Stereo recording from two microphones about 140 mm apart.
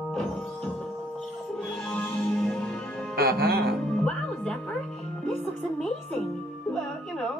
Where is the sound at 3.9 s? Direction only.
5° left (ahead or behind).